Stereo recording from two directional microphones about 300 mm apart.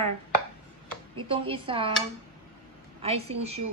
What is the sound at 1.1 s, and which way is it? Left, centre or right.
Speech, centre.